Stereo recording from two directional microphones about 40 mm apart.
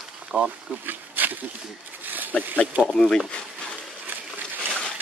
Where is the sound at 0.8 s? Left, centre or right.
Right.